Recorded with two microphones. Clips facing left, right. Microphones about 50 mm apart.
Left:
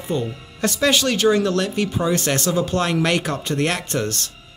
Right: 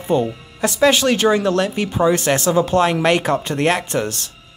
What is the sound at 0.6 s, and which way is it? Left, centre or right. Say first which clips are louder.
Speech: right 4 dB; centre.